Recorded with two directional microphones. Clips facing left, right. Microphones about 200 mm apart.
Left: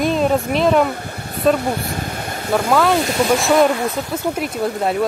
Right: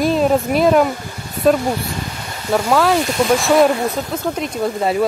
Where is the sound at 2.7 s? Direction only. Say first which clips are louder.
Even; centre (ahead or behind).